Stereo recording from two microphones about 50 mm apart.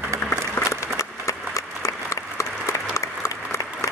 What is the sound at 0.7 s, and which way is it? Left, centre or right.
Applause, left.